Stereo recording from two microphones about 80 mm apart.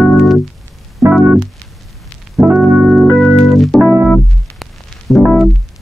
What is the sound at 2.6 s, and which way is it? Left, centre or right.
Organ, centre.